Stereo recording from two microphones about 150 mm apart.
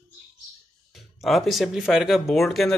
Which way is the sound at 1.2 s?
Centre (ahead or behind).